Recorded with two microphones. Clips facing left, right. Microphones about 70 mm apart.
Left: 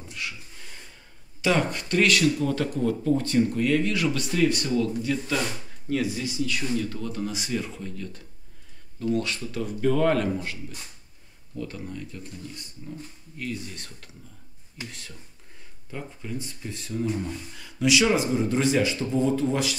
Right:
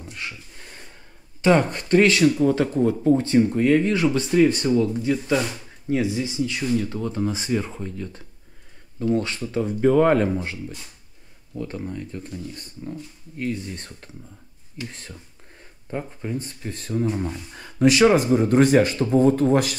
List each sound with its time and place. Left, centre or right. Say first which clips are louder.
1.4 s speech: right 6 dB; right